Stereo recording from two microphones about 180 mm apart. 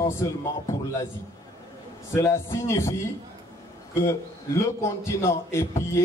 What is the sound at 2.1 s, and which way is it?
Speech, 15° left (ahead or behind).